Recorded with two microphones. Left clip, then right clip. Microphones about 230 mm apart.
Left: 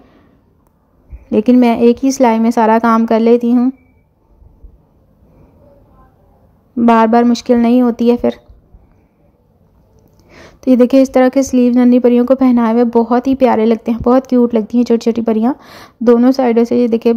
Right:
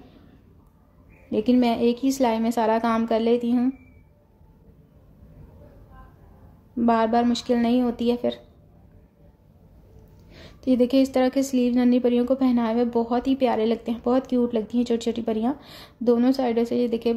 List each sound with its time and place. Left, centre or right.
1.3 s a woman's voice: left
6.8 s a woman's voice: left
10.3 s a woman's voice: left